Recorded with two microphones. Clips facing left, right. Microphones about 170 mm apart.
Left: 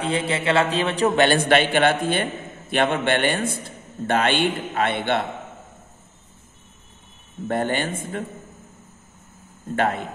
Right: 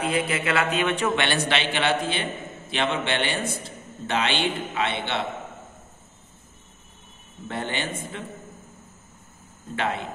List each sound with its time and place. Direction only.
0.0 s a man's voice: 30° left (ahead or behind); by 5.2 s 50° left (ahead or behind)
7.4 s a man's voice: 50° left (ahead or behind)
9.8 s a man's voice: 50° left (ahead or behind)